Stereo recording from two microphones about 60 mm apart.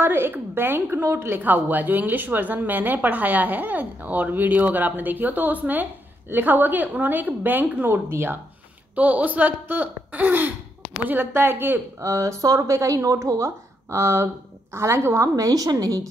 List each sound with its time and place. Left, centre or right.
0.0 s a woman's voice: right
1.4 s a woman's voice: right
8.1 s a woman's voice: right
8.9 s a woman's voice: right
12.0 s speech: right
15.3 s a woman's voice: right